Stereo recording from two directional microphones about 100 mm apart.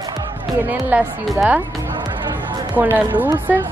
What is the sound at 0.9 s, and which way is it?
Speech, 15° right (ahead or behind).